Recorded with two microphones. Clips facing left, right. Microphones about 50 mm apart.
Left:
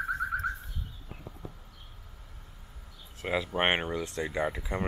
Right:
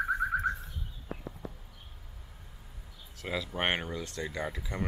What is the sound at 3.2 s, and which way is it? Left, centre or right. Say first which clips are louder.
Speech: left 4 dB; left.